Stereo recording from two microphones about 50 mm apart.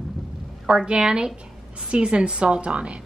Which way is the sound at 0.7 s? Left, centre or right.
Centre.